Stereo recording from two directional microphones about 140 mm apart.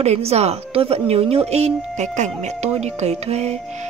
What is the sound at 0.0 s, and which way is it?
Speech, 50° right (ahead or behind).